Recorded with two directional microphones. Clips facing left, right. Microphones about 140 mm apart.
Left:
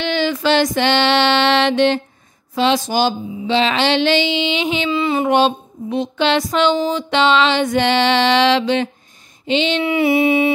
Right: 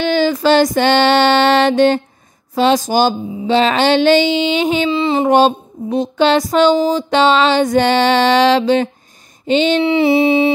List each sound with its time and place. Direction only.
0.0 s speech: 40° right (ahead or behind)
4.9 s music: 30° right (ahead or behind)
5.3 s a sound: 40° right (ahead or behind)
9.5 s speech: 45° right (ahead or behind)
9.8 s music: 30° right (ahead or behind)